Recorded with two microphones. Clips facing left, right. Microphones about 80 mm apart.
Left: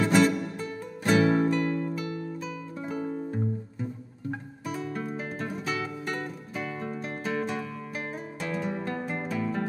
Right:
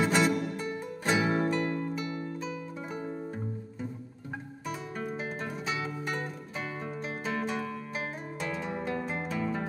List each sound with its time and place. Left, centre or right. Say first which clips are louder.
0.0 s music: left 3 dB; centre
4.3 s music: left 3 dB; centre